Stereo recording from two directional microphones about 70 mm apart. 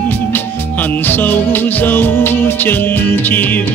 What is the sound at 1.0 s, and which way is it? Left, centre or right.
Music, left.